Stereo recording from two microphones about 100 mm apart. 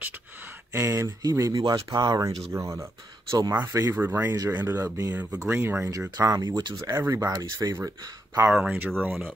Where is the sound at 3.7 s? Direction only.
30° right (ahead or behind).